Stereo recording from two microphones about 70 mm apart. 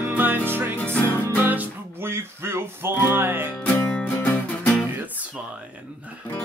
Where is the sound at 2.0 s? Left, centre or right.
Right.